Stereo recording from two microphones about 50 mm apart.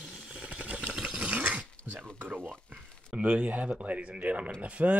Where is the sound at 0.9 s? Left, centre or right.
Centre.